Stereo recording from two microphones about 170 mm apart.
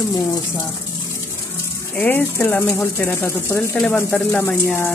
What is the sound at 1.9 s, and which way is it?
Speech, 10° left (ahead or behind).